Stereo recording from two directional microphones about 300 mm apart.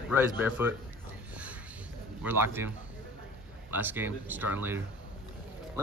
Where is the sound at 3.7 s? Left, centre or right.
Centre.